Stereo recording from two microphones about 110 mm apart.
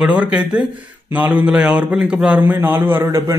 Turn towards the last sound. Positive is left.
turn(degrees=-25)  # may be behind; listen again after turning